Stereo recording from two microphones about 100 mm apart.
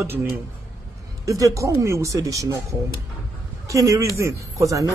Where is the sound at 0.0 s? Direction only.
20° right (ahead or behind).